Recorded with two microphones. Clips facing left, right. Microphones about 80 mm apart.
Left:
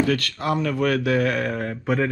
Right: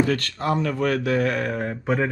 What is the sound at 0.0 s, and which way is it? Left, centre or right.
Speech, right.